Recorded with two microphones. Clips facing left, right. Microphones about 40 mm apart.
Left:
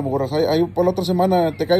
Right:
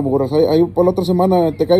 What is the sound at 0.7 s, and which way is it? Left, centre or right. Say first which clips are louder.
Speech: right 4 dB; left.